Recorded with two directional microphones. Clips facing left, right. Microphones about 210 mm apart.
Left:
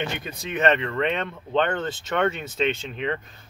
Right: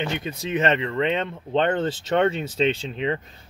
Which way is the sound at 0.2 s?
25° right (ahead or behind).